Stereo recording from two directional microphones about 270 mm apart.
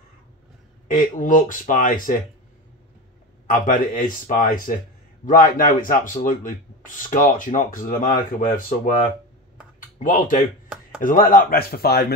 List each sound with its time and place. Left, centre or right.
0.8 s speech: left
3.4 s speech: left
9.9 s speech: left